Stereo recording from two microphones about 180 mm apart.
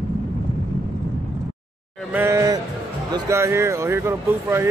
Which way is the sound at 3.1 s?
15° right (ahead or behind).